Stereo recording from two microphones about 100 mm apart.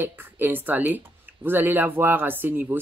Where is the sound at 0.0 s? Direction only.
20° right (ahead or behind).